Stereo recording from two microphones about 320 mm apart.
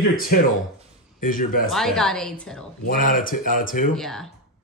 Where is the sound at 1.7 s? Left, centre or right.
Centre.